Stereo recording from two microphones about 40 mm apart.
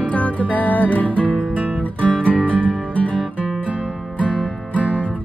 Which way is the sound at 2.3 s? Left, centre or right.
Right.